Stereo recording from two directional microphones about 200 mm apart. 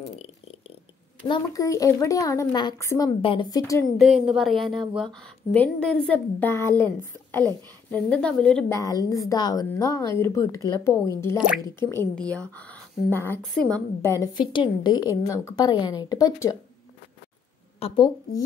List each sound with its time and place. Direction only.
0.2 s a sound: 30° left (ahead or behind)
1.2 s a woman's voice: 20° left (ahead or behind)
3.8 s a woman's voice: centre (ahead or behind)
8.7 s a woman's voice: 15° left (ahead or behind)
11.3 s a woman's voice: 5° right (ahead or behind)
11.6 s a woman's voice: 10° left (ahead or behind)
17.7 s a woman's voice: 25° left (ahead or behind)